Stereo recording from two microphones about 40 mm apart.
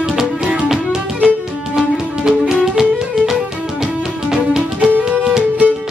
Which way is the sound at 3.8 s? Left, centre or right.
Centre.